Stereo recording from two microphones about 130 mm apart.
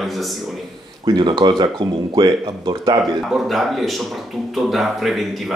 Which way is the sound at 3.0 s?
Centre (ahead or behind).